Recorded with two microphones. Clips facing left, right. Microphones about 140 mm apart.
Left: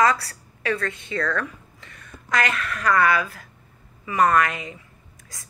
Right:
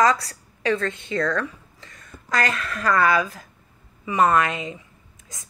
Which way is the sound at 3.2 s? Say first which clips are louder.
Right 3 dB; 20° right (ahead or behind).